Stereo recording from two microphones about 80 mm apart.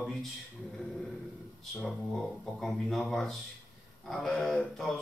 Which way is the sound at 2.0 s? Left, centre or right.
Centre.